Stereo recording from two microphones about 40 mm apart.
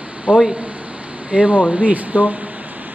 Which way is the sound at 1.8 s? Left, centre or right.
Right.